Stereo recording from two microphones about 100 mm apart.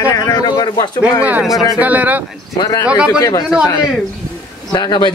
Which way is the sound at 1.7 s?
15° right (ahead or behind).